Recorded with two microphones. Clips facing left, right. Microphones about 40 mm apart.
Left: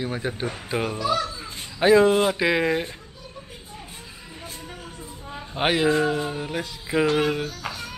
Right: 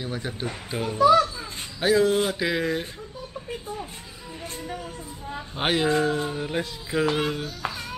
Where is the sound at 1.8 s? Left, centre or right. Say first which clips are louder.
Left 4 dB; centre.